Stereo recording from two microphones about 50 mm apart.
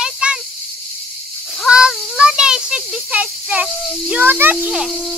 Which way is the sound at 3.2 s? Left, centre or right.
Right.